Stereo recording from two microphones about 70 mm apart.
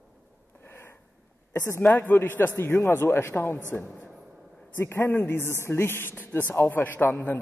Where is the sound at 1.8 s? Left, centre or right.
Left.